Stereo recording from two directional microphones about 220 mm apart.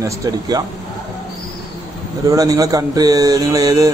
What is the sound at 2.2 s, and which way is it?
Speech, 15° right (ahead or behind).